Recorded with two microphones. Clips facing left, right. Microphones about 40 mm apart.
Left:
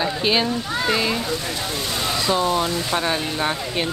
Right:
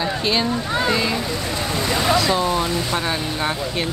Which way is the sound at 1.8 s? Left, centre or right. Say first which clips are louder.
Right 8 dB; right.